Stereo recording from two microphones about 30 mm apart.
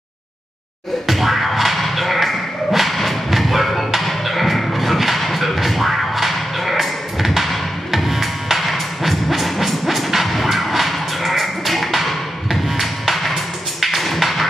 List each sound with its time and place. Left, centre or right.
1.0 s music: centre